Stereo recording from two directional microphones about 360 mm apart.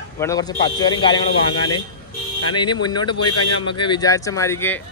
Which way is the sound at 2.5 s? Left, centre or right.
Centre.